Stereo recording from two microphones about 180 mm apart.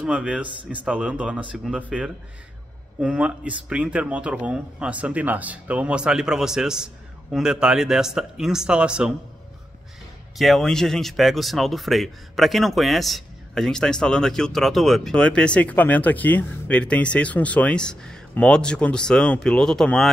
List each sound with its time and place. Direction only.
0.0 s speech: 5° right (ahead or behind)
3.0 s speech: 5° right (ahead or behind)
10.3 s speech: centre (ahead or behind)